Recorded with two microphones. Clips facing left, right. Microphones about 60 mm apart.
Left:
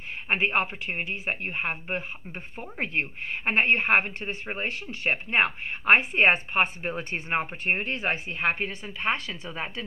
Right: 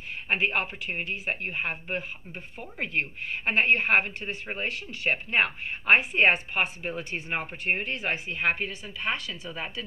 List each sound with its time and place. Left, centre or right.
0.3 s speech: left